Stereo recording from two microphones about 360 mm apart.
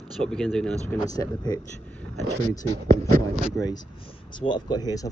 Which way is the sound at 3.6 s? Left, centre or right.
Centre.